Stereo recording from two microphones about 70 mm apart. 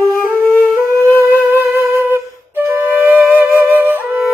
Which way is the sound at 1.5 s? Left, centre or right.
Right.